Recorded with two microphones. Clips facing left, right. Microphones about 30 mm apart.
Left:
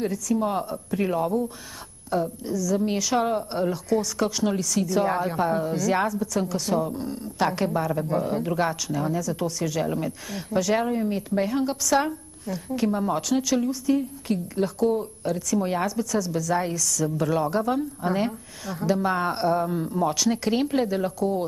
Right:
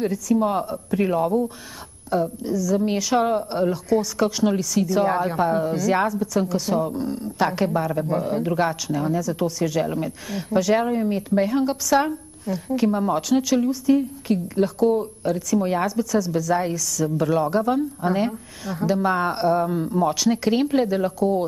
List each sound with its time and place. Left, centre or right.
0.0 s a woman's voice: centre
6.9 s speech: right
7.3 s a woman's voice: centre